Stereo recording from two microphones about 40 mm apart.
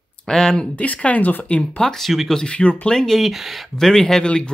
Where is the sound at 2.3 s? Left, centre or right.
Left.